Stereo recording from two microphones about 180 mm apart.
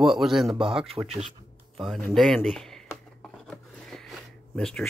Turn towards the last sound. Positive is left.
turn(degrees=5)  # may be behind; listen again after turning